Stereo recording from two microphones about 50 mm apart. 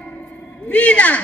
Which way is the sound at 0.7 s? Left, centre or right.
Left.